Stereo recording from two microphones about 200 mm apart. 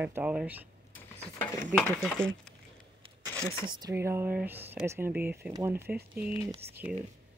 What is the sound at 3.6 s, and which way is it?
Speech, 20° right (ahead or behind).